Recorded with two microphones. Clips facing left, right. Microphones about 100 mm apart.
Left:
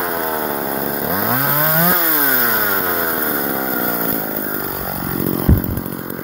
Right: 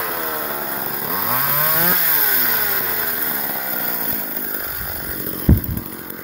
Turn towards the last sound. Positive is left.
turn(degrees=70)  # may be behind; listen again after turning